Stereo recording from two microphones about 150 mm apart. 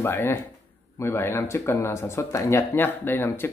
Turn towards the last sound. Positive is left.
turn(degrees=15)  # may be behind; listen again after turning